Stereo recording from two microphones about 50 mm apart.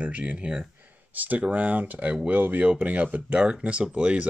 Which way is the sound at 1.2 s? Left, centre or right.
Right.